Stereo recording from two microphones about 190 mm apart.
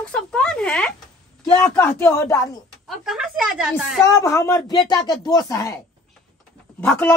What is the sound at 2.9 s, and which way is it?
Speech, centre (ahead or behind).